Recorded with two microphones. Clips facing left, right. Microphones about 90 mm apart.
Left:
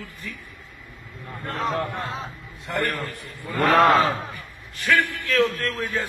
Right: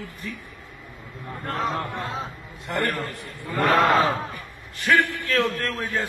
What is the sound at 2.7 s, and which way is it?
Speech, 25° right (ahead or behind).